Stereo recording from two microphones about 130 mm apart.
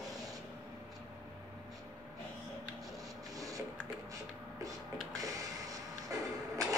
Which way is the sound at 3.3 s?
25° right (ahead or behind).